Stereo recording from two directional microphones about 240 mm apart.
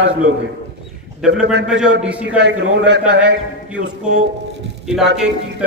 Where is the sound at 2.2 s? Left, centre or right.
Right.